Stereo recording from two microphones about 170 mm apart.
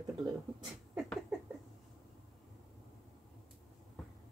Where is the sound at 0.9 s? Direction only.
5° left (ahead or behind).